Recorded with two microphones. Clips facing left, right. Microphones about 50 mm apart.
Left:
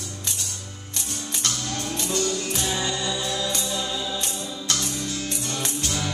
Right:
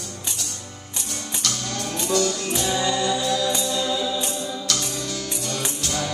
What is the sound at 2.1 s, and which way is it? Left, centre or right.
Music, right.